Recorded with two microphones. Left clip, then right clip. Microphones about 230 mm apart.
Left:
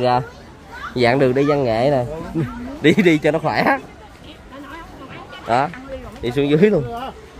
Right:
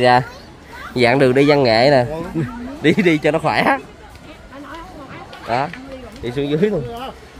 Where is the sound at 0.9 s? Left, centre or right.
Centre.